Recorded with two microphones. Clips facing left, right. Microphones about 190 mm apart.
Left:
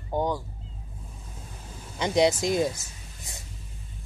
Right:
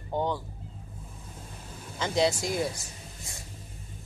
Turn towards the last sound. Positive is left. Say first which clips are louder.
# right 2 dB
turn(degrees=20)  # may be behind; listen again after turning